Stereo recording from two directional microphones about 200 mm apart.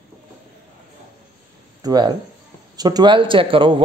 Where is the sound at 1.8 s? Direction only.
20° right (ahead or behind).